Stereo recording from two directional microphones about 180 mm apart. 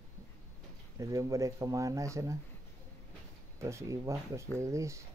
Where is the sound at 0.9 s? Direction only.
20° right (ahead or behind).